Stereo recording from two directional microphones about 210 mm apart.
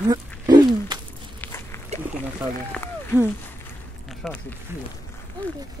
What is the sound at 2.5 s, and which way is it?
Speech, 10° left (ahead or behind).